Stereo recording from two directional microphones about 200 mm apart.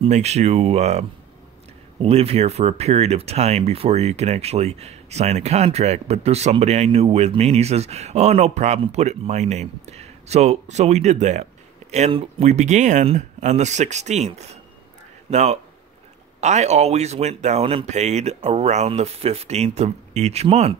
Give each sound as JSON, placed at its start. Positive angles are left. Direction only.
{"t": 0.0, "sound": "speech", "side_deg": -35}